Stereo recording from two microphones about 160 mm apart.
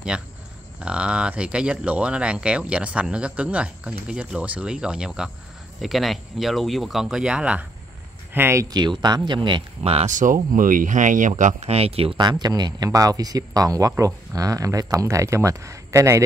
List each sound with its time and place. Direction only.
0.1 s speech: 5° right (ahead or behind)
8.7 s speech: 25° right (ahead or behind)